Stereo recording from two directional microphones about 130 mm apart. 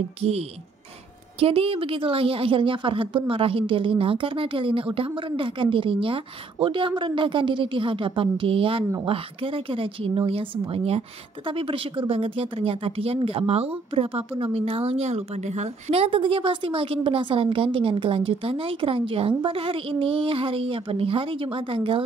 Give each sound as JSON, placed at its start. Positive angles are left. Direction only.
{"t": 0.2, "sound": "a woman's voice", "side_deg": -50}